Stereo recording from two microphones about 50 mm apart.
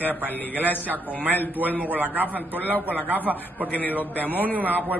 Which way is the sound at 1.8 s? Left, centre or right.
Right.